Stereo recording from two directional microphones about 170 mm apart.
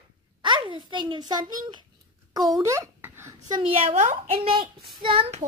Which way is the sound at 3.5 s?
35° right (ahead or behind).